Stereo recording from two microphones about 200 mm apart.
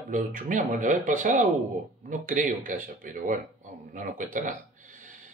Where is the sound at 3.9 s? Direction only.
40° right (ahead or behind).